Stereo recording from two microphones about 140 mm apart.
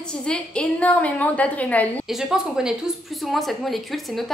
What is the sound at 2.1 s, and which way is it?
A woman's voice, 5° right (ahead or behind).